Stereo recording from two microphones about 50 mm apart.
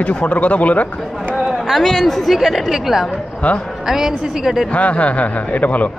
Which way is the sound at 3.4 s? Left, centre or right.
Left.